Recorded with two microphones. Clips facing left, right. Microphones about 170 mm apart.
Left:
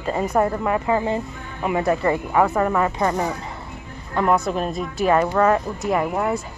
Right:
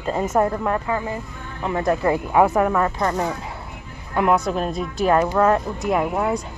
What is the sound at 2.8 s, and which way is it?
Speech, 10° left (ahead or behind).